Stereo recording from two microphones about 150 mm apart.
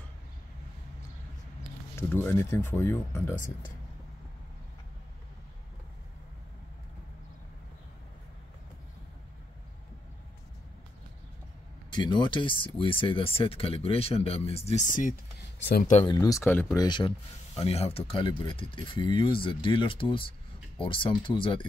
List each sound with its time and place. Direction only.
2.0 s speech: 15° left (ahead or behind)
11.9 s speech: 30° left (ahead or behind); by 16.0 s 60° left (ahead or behind)
16.1 s speech: 25° left (ahead or behind)
16.4 s speech: 10° left (ahead or behind)
16.7 s speech: 30° left (ahead or behind)
17.6 s speech: 45° left (ahead or behind)